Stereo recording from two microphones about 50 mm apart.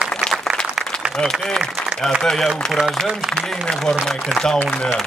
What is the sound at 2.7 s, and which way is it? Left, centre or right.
Speech, centre.